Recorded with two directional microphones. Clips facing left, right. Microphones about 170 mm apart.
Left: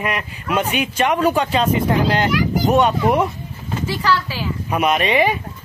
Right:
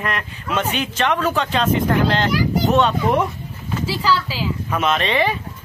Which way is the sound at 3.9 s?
10° right (ahead or behind).